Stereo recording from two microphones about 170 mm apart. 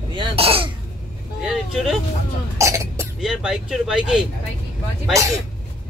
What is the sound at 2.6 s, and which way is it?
Throat clearing, 15° right (ahead or behind).